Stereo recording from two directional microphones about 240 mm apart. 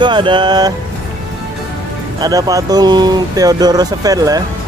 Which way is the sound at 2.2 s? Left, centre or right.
Centre.